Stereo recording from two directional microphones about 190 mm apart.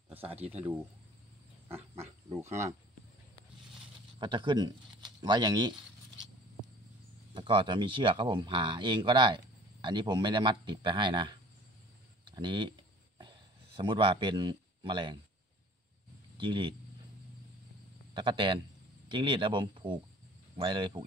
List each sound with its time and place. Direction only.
2.3 s speech: 15° right (ahead or behind)
4.2 s a sound: 25° right (ahead or behind)
7.3 s speech: 25° right (ahead or behind)
13.7 s speech: 25° right (ahead or behind)
16.3 s speech: 25° right (ahead or behind)
18.1 s speech: 25° right (ahead or behind)